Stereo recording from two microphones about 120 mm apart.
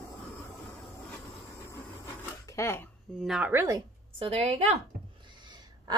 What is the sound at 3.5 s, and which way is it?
Speech, 25° right (ahead or behind).